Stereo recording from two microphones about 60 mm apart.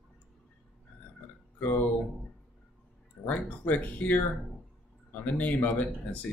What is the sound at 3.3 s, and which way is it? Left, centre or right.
Speech, left.